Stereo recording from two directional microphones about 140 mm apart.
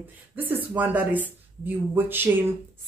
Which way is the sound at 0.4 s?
15° right (ahead or behind).